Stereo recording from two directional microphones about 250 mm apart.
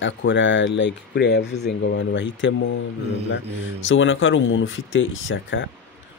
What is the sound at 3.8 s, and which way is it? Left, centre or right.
Speech, left.